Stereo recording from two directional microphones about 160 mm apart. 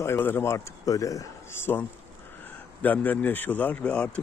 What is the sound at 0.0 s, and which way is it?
Speech, 15° left (ahead or behind).